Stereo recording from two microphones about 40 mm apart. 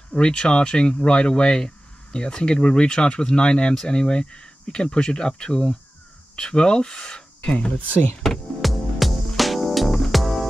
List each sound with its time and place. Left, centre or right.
0.1 s speech: left
7.5 s speech: left
8.5 s music: centre